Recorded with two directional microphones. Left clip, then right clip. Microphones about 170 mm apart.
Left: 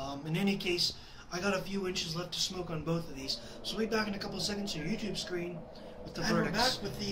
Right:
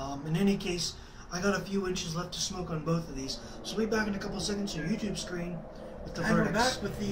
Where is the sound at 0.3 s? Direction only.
10° left (ahead or behind).